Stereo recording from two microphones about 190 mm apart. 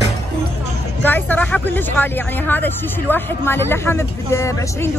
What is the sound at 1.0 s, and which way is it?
Speech, 10° left (ahead or behind).